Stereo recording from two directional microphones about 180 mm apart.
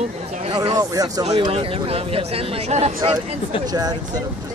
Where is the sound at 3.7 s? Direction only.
20° right (ahead or behind).